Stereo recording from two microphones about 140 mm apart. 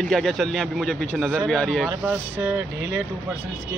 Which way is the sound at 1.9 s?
20° right (ahead or behind).